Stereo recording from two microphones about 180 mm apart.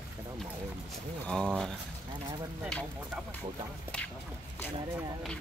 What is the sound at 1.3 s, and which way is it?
Speech, 5° left (ahead or behind).